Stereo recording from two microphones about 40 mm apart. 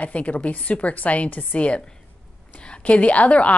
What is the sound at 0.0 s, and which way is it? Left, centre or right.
A woman's voice, left.